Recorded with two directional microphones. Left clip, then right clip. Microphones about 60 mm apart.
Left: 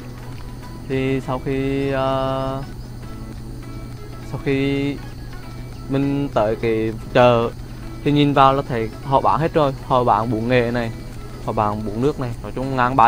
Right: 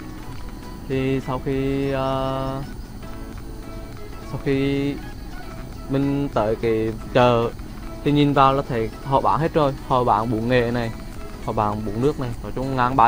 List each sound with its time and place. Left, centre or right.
0.8 s mantra: left
4.5 s mantra: left
8.0 s speech: left
10.4 s mantra: left
11.4 s speech: left